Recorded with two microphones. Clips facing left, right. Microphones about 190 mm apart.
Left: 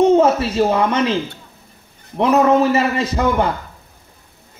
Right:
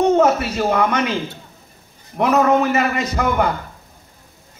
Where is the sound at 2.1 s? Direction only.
30° left (ahead or behind).